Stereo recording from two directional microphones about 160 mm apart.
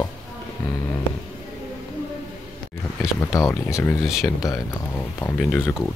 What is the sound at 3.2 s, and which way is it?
Speech, 20° left (ahead or behind).